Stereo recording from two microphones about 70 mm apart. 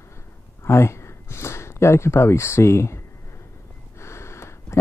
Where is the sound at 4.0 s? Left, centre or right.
Left.